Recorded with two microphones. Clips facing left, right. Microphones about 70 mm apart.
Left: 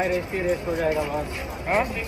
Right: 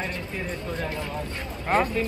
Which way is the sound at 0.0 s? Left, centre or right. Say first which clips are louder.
Left 8 dB; centre.